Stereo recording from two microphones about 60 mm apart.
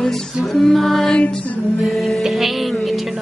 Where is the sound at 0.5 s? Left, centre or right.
Centre.